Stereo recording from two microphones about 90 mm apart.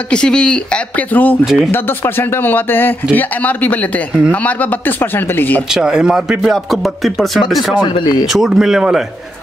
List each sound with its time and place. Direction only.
0.1 s speech: 10° left (ahead or behind)
1.4 s speech: centre (ahead or behind)
1.7 s speech: 25° left (ahead or behind)
5.7 s speech: 10° right (ahead or behind)
7.7 s speech: 60° left (ahead or behind)
8.3 s speech: 5° right (ahead or behind)